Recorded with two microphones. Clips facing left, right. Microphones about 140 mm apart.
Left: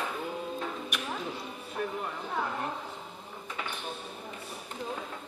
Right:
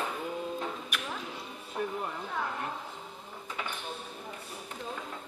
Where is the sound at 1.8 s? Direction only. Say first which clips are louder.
Even; 15° right (ahead or behind).